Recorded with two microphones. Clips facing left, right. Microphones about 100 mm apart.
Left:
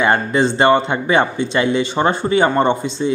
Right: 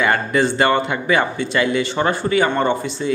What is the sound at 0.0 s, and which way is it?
A man's voice, 25° left (ahead or behind).